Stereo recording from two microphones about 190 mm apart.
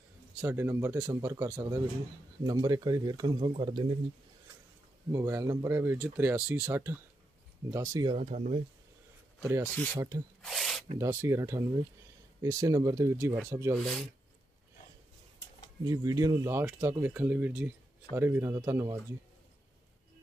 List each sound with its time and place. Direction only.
0.4 s speech: 10° right (ahead or behind)
5.1 s speech: 15° right (ahead or behind)
8.1 s speech: 30° right (ahead or behind)
9.4 s speech: 10° right (ahead or behind)
10.4 s rub: centre (ahead or behind)
11.0 s speech: 15° right (ahead or behind)
13.7 s speech: centre (ahead or behind)
15.8 s speech: 20° right (ahead or behind)